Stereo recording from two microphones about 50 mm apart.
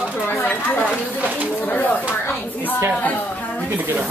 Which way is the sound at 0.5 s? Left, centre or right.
Left.